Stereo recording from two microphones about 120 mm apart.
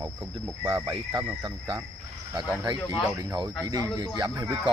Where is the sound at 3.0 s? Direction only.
30° right (ahead or behind).